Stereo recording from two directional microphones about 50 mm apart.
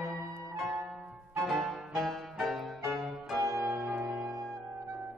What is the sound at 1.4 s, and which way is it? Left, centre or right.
Music, centre.